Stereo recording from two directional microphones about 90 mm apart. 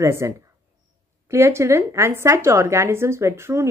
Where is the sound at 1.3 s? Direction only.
30° right (ahead or behind).